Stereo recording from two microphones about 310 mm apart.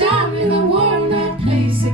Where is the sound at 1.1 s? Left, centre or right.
Centre.